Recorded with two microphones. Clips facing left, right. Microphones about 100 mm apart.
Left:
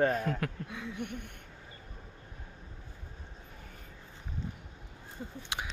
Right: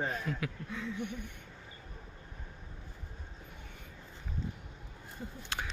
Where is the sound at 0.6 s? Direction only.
15° left (ahead or behind).